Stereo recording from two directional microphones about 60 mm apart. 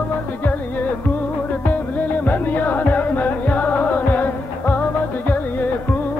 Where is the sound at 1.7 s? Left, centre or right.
Left.